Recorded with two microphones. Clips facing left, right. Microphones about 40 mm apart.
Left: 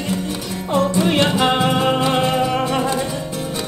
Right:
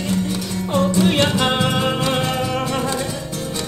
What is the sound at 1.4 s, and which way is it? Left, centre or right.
Music, centre.